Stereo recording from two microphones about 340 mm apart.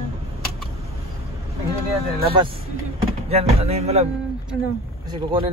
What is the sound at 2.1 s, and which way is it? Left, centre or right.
A man's voice, centre.